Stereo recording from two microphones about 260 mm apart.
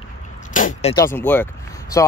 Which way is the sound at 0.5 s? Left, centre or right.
Left.